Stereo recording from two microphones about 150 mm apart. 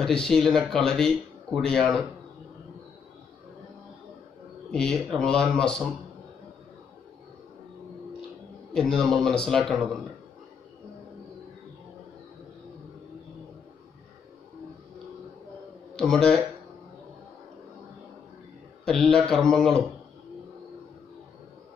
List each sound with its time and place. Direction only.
0.0 s speech: 5° left (ahead or behind)
4.6 s speech: 5° left (ahead or behind)
8.7 s speech: 5° left (ahead or behind)
16.0 s speech: 5° left (ahead or behind)
18.9 s speech: 5° left (ahead or behind)